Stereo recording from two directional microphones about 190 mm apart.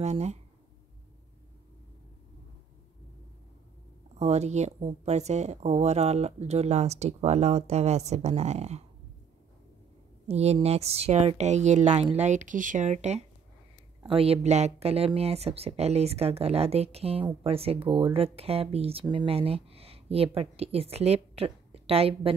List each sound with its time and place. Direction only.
0.0 s speech: 35° right (ahead or behind)
4.2 s speech: 35° right (ahead or behind)
10.2 s speech: 35° right (ahead or behind)